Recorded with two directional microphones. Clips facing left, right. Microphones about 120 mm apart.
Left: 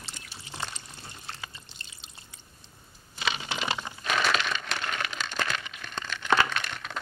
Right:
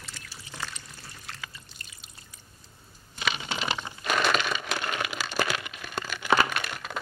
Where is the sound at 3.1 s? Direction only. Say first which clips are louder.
Right 1 dB; 25° left (ahead or behind).